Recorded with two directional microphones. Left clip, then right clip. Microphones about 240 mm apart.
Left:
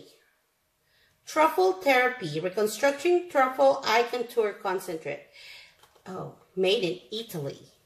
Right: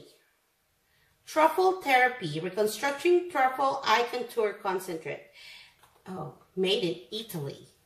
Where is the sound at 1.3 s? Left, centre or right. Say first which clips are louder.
Left 1 dB; centre.